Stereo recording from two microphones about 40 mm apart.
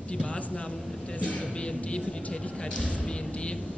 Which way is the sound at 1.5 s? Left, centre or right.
Left.